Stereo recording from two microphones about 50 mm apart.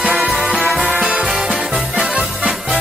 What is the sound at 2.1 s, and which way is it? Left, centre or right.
Music, right.